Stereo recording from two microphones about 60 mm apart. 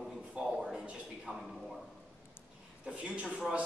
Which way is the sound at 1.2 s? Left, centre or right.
Centre.